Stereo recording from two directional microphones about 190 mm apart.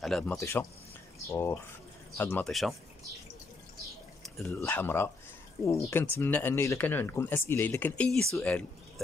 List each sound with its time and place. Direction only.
0.0 s speech: centre (ahead or behind)
0.4 s speech: 15° left (ahead or behind)
4.2 s speech: 5° left (ahead or behind)